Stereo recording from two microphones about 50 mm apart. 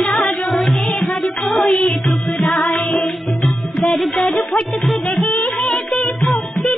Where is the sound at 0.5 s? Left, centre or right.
Centre.